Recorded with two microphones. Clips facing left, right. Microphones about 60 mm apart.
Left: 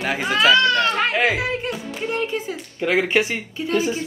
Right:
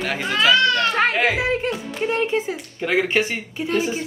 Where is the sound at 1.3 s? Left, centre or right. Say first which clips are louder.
Right 2 dB; right.